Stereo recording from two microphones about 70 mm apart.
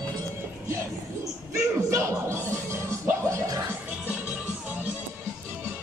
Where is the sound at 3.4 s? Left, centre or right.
Right.